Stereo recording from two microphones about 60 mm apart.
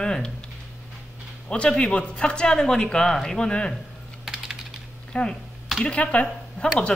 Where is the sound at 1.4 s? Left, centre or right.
Centre.